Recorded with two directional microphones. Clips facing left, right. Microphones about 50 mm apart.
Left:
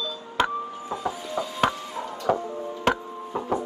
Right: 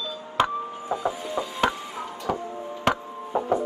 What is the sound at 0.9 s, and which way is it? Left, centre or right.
Music, centre.